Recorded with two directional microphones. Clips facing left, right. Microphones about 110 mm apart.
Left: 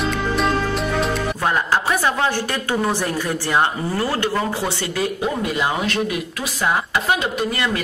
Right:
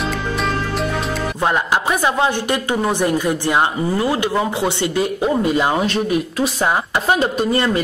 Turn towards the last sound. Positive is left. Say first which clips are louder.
# right 5 dB
turn(degrees=-35)  # may be behind; listen again after turning